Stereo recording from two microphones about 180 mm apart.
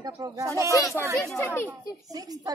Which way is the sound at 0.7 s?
15° left (ahead or behind).